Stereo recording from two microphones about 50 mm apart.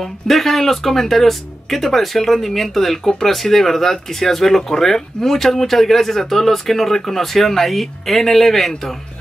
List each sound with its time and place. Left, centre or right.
0.0 s speech: centre